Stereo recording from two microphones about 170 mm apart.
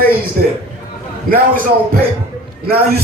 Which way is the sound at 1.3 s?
60° right (ahead or behind).